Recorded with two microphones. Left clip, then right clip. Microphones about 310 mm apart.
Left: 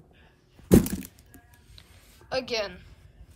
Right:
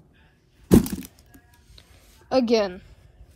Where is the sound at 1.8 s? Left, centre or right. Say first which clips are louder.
Right 1 dB; centre.